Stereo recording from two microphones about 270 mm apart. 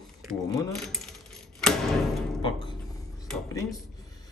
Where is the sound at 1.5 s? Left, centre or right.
Centre.